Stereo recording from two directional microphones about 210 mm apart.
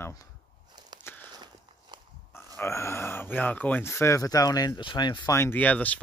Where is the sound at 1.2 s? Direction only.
20° right (ahead or behind).